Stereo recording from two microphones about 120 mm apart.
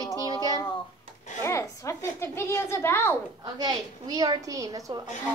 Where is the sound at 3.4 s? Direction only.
35° right (ahead or behind).